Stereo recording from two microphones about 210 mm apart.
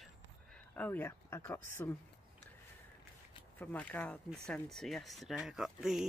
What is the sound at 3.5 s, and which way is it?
Speech, 5° left (ahead or behind).